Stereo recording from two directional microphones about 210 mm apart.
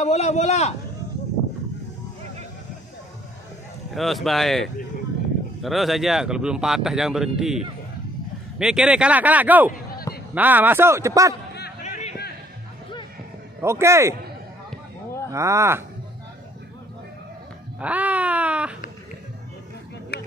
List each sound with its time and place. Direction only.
0.0 s speech: 30° left (ahead or behind)
3.9 s speech: centre (ahead or behind)
9.7 s a sound: 45° left (ahead or behind)
10.3 s speech: 10° right (ahead or behind)
11.8 s a sound: 30° left (ahead or behind)
13.6 s speech: 10° right (ahead or behind)
15.3 s speech: 15° right (ahead or behind)
17.7 s wail: 5° right (ahead or behind)
20.1 s a sound: 50° left (ahead or behind)